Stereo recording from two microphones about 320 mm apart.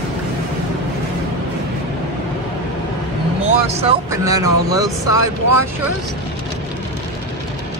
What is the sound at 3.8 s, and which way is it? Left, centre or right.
Speech, centre.